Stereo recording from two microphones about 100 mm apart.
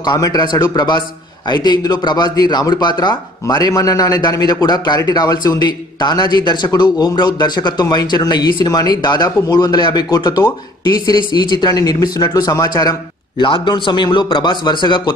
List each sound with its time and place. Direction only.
0.0 s a man's voice: 40° left (ahead or behind)
13.4 s a man's voice: 55° left (ahead or behind)